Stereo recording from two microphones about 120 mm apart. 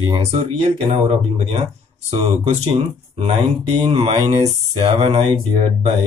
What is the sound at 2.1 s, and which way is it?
Speech, 55° right (ahead or behind).